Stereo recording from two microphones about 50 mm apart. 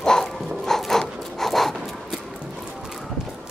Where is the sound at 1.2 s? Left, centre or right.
Centre.